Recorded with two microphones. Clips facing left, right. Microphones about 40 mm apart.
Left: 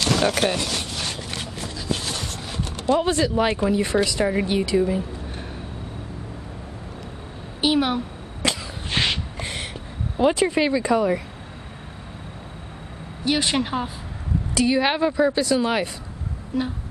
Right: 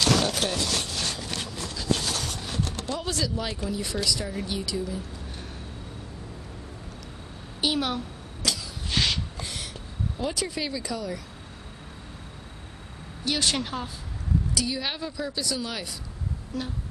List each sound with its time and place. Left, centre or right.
0.2 s speech: left
0.6 s a sound: left
2.7 s speech: left
7.6 s speech: centre
8.4 s sneeze: left
10.1 s speech: left
13.2 s speech: left
14.5 s speech: left